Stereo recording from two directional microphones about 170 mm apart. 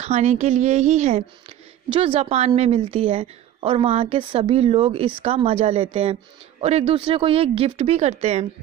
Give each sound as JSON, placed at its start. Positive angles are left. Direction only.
{"t": 0.0, "sound": "a woman's voice", "side_deg": -40}